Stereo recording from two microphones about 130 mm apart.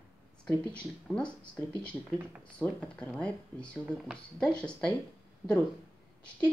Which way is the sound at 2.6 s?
10° left (ahead or behind).